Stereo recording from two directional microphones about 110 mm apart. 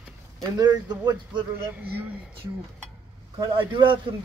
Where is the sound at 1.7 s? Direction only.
15° right (ahead or behind).